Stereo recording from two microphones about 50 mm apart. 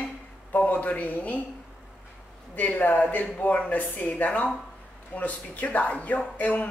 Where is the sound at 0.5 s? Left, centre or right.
Left.